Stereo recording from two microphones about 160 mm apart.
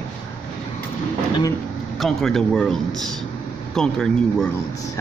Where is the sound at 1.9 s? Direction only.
Centre (ahead or behind).